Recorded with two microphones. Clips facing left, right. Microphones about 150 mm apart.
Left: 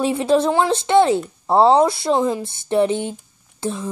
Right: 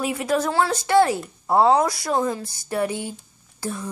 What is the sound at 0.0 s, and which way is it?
Speech, 25° left (ahead or behind).